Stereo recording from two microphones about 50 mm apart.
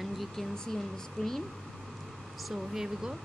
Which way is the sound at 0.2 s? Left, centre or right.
Centre.